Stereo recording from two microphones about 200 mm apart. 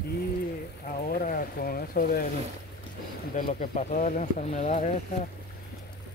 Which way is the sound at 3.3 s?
45° left (ahead or behind).